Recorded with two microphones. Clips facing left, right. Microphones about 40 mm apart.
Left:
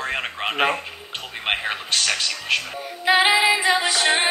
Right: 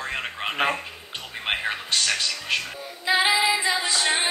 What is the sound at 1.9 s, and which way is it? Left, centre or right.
Speech, left.